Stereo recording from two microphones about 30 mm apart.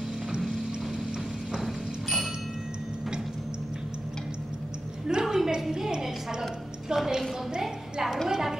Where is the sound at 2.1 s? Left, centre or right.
Centre.